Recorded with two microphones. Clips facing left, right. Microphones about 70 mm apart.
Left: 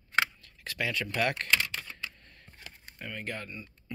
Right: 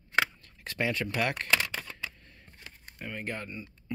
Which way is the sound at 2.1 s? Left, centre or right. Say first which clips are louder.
Right 1 dB; centre.